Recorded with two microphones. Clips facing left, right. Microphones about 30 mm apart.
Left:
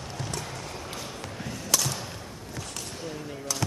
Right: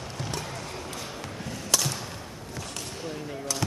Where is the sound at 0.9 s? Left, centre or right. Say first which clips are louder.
Even; centre.